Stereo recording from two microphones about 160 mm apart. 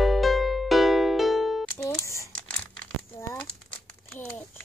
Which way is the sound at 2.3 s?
10° left (ahead or behind).